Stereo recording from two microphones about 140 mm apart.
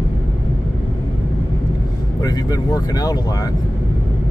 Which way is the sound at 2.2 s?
25° left (ahead or behind).